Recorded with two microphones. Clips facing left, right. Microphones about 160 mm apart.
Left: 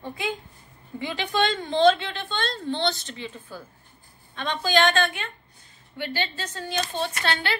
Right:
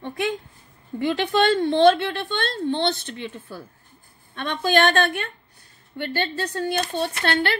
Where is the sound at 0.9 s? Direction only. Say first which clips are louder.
Right 5 dB; 60° right (ahead or behind).